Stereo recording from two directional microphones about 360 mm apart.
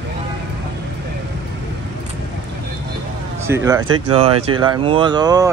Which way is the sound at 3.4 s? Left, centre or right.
Centre.